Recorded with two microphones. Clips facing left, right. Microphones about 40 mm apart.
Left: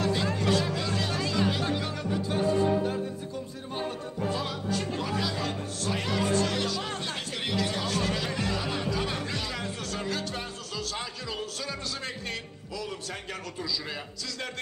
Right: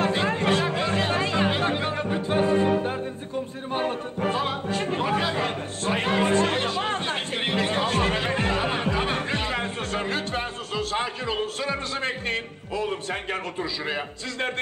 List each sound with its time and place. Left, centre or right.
0.0 s music: right
3.7 s speech: right